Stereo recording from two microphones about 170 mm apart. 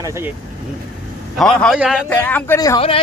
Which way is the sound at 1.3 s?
5° left (ahead or behind).